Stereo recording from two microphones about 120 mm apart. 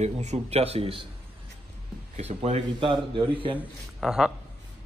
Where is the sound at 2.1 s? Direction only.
70° right (ahead or behind).